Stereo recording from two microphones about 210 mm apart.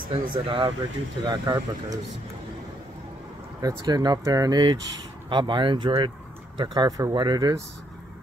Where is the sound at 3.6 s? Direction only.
20° right (ahead or behind).